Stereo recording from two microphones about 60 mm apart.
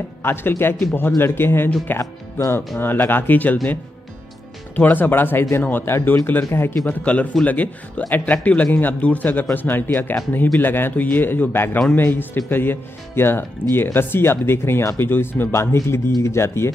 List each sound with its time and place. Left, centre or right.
0.2 s speech: left
4.7 s speech: left
6.9 s speech: left
15.0 s speech: left